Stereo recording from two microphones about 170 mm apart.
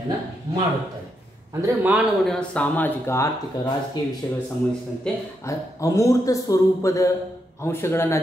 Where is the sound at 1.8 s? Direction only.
10° right (ahead or behind).